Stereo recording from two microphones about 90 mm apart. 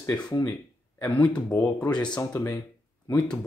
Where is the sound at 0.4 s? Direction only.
20° left (ahead or behind).